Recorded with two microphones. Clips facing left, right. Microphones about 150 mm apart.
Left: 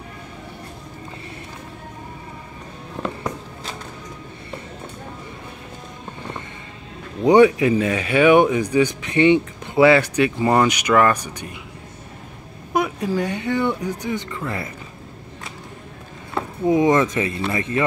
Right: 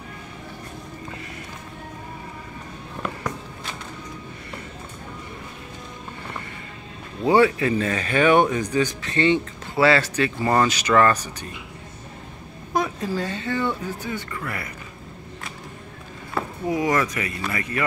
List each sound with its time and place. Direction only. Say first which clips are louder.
7.2 s speech: left 5 dB; 15° left (ahead or behind)
12.7 s speech: left 3 dB; 15° left (ahead or behind)
16.3 s speech: left 6 dB; 25° left (ahead or behind)